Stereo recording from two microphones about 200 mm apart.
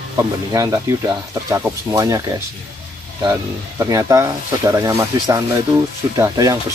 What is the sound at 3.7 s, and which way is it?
Speech, 15° right (ahead or behind).